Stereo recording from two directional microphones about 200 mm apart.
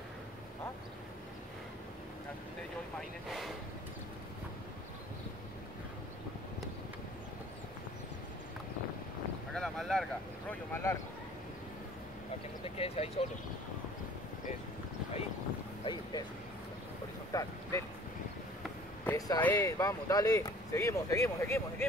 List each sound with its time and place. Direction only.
3.0 s speech: centre (ahead or behind)
9.5 s boat: centre (ahead or behind)
10.5 s speech: 10° left (ahead or behind)
12.6 s speech: 30° left (ahead or behind)
15.8 s speech: 20° left (ahead or behind)
17.3 s vehicle: 15° left (ahead or behind)
19.0 s speech: 20° left (ahead or behind)